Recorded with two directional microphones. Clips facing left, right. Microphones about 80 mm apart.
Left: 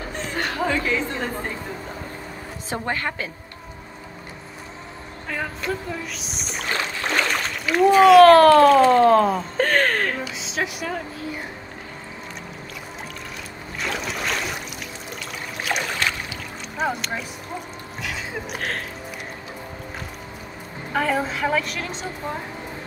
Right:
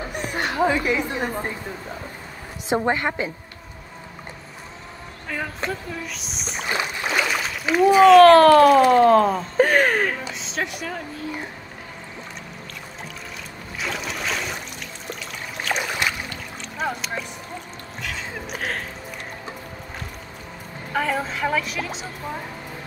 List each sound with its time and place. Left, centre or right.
0.1 s chatter: centre
2.7 s a woman's voice: centre
5.7 s speech: centre
6.6 s rowboat: centre
7.1 s a sound: centre
7.7 s speech: centre
9.6 s a sound: centre
10.3 s speech: centre
13.7 s trickle: centre
15.0 s pour: centre
15.8 s boat: centre
16.3 s boat: centre
18.0 s speech: centre
20.9 s speech: centre